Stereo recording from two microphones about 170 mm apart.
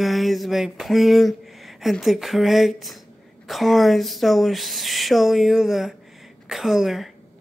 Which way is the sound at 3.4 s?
Centre (ahead or behind).